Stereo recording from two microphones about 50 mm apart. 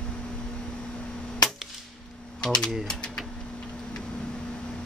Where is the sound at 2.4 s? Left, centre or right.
Centre.